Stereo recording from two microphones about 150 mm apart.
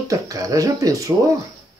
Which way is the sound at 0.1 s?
20° right (ahead or behind).